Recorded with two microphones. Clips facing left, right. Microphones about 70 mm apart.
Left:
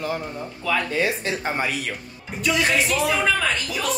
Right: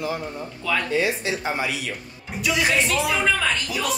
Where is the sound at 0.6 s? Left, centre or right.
Centre.